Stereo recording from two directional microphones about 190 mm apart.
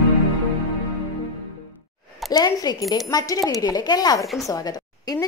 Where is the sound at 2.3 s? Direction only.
20° left (ahead or behind).